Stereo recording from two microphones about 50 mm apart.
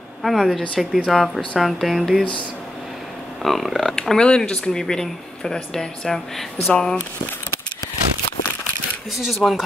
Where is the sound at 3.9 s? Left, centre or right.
Centre.